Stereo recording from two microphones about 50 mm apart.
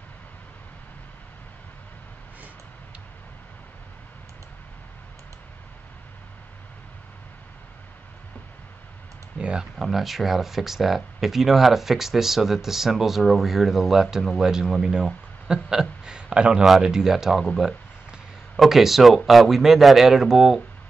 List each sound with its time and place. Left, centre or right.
9.4 s speech: centre
9.8 s a man's voice: centre
16.6 s speech: centre
18.6 s speech: centre